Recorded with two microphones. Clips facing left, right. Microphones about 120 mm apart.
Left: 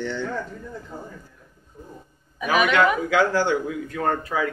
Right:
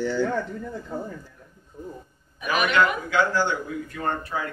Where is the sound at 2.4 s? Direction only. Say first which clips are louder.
Left 3 dB; 90° left.